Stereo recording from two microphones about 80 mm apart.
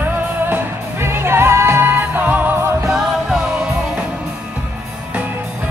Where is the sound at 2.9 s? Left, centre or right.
Centre.